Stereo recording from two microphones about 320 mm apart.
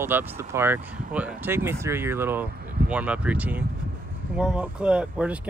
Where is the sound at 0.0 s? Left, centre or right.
Centre.